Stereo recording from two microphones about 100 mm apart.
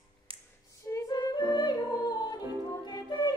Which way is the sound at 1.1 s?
45° left (ahead or behind).